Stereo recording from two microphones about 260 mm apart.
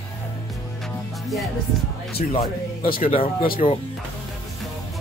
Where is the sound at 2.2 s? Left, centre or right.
Left.